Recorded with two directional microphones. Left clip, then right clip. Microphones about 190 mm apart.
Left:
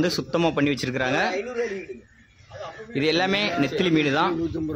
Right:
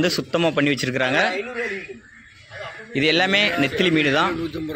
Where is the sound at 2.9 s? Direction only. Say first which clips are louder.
Right 4 dB; 5° right (ahead or behind).